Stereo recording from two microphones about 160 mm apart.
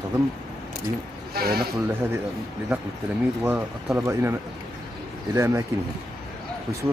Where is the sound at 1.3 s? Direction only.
75° right (ahead or behind).